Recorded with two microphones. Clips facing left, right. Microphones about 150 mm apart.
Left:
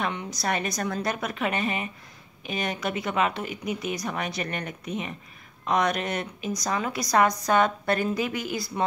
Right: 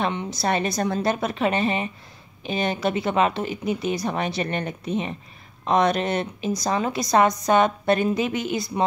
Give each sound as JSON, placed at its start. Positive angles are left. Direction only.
{"t": 0.0, "sound": "a woman's voice", "side_deg": -25}